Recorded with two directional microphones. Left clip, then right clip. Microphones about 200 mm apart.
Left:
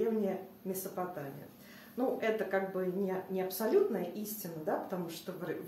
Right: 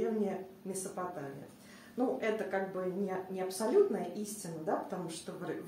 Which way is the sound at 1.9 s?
15° left (ahead or behind).